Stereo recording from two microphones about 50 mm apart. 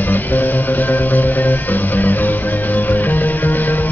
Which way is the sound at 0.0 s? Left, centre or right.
Left.